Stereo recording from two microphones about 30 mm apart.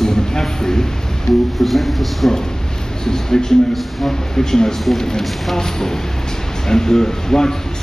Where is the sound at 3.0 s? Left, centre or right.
Left.